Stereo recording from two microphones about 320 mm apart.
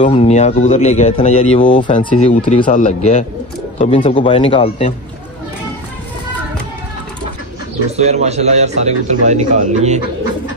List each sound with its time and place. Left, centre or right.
0.0 s a man's voice: centre
7.9 s speech: right